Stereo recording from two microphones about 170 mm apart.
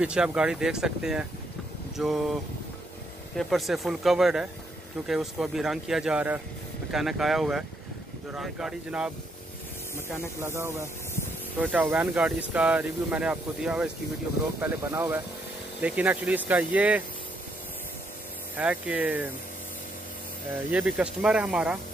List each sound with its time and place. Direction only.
0.0 s speech: 5° right (ahead or behind)
3.3 s speech: centre (ahead or behind)
10.4 s speech: 15° right (ahead or behind)
18.6 s speech: 10° right (ahead or behind)
20.5 s speech: 5° right (ahead or behind)